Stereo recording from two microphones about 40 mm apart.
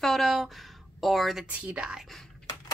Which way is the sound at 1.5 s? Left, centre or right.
Right.